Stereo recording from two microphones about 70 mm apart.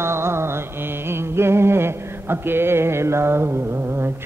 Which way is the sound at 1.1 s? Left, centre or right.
Right.